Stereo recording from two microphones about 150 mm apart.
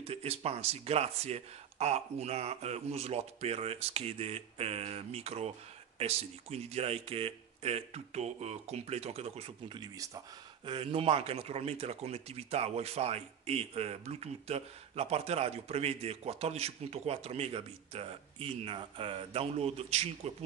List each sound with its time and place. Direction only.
0.0 s speech: 40° right (ahead or behind)
9.8 s speech: 25° right (ahead or behind)
10.6 s speech: 35° right (ahead or behind)